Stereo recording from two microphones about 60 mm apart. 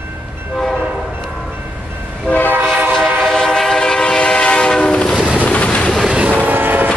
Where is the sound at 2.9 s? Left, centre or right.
Centre.